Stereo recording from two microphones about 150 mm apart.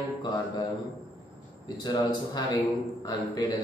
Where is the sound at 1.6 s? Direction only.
30° left (ahead or behind).